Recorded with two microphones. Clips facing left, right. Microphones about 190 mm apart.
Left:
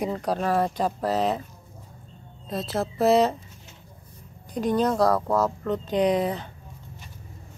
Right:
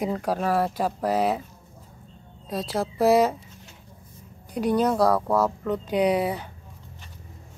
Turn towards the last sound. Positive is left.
turn(degrees=-10)  # may be behind; listen again after turning